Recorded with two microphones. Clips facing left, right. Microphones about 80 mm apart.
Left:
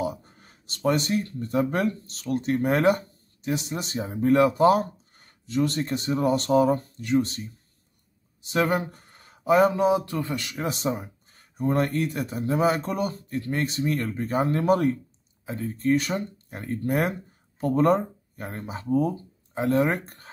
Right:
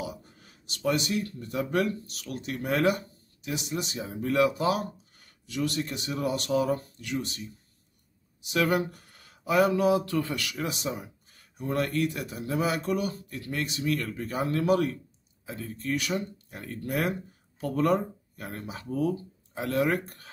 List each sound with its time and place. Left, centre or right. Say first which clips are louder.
0.0 s speech: left 7 dB; left
10.7 s speech: left 5 dB; left